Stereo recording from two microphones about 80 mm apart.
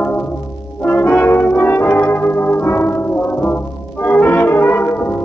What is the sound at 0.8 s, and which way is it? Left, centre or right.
Brass instrument, left.